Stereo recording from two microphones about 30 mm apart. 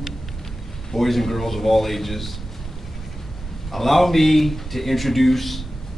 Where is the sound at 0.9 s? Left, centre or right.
Centre.